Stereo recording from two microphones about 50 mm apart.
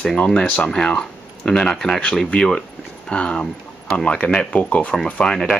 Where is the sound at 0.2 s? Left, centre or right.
Centre.